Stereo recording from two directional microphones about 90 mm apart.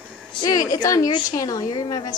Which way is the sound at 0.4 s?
40° left (ahead or behind).